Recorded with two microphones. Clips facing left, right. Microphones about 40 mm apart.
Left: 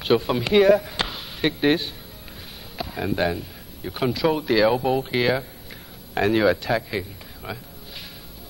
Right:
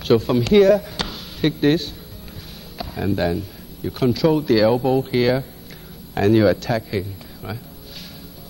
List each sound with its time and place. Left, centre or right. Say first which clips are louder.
0.0 s speech: right 3 dB; centre